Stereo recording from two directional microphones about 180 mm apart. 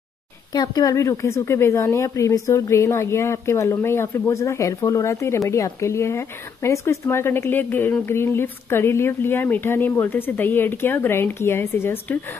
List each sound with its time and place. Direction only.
0.5 s speech: 20° left (ahead or behind)